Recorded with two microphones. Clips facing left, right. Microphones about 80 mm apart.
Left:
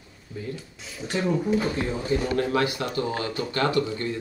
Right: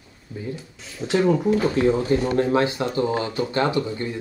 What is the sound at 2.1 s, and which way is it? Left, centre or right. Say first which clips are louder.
Speech: right 4 dB; right.